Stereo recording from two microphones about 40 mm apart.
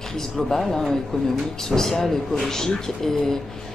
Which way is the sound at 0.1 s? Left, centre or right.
Centre.